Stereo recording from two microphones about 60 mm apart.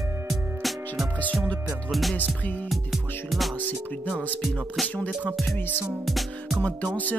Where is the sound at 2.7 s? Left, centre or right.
Centre.